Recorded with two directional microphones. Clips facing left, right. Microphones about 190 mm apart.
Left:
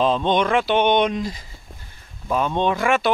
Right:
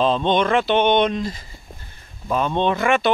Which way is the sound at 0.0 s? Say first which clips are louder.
Right 1 dB; 10° left (ahead or behind).